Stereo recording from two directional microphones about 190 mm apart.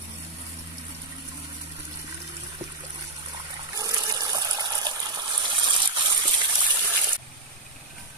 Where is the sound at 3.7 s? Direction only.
20° right (ahead or behind).